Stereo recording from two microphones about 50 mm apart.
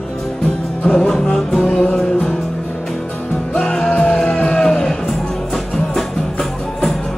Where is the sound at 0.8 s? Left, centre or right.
Centre.